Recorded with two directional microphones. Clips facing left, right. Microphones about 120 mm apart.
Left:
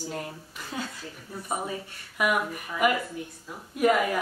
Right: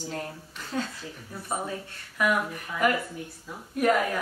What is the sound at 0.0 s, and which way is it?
Speech, 10° left (ahead or behind).